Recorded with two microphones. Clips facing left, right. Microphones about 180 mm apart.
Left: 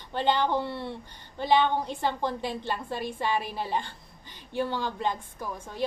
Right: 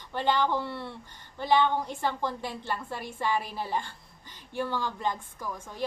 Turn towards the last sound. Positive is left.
turn(degrees=20)  # may be behind; listen again after turning